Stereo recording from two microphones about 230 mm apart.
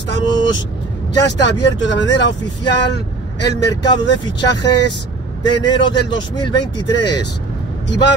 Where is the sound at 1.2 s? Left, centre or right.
Left.